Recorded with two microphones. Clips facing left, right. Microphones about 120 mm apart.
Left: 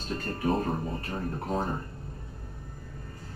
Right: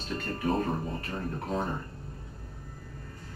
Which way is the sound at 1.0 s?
35° left (ahead or behind).